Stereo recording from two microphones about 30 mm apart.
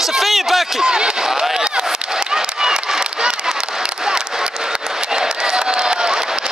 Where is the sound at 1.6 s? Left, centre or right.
Right.